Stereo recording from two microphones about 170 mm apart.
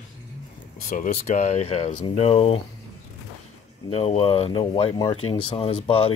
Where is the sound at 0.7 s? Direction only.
50° left (ahead or behind).